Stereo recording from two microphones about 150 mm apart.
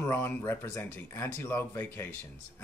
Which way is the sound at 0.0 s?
15° left (ahead or behind).